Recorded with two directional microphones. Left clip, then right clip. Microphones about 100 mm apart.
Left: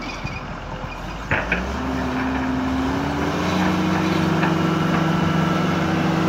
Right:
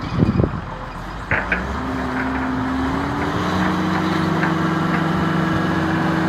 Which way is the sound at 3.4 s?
40° left (ahead or behind).